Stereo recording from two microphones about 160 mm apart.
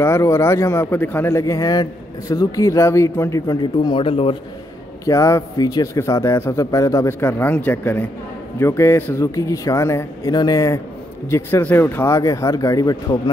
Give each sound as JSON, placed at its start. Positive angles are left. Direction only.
{"t": 0.0, "sound": "speech", "side_deg": 15}
{"t": 5.0, "sound": "a man's voice", "side_deg": 20}